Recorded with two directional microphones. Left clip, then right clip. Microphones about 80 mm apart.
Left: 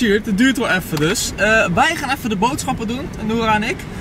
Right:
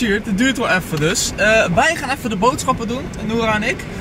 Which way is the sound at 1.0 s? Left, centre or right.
Centre.